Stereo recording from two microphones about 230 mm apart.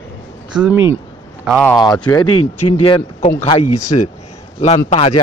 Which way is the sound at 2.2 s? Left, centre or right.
Left.